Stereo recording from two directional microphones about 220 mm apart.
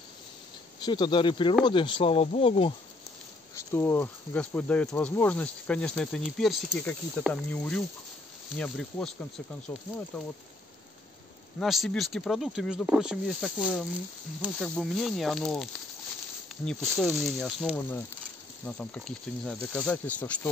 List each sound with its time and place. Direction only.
0.8 s speech: 20° left (ahead or behind)
3.5 s speech: 10° left (ahead or behind)
11.6 s speech: centre (ahead or behind)
16.8 s speech: centre (ahead or behind)